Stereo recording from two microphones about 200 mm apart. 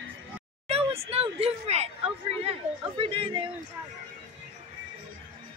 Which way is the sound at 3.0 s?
25° right (ahead or behind).